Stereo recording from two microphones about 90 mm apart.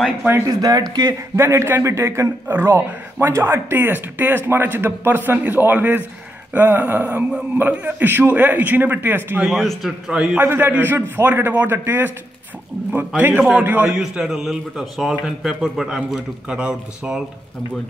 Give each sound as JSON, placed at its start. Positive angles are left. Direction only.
{"t": 0.5, "sound": "speech", "side_deg": -45}
{"t": 1.3, "sound": "a man's voice", "side_deg": -30}
{"t": 9.4, "sound": "a man's voice", "side_deg": 0}
{"t": 10.3, "sound": "a man's voice", "side_deg": -25}
{"t": 13.2, "sound": "a man's voice", "side_deg": -20}